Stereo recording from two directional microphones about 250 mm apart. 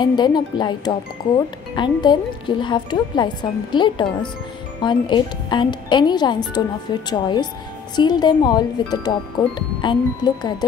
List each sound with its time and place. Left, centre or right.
0.0 s speech: centre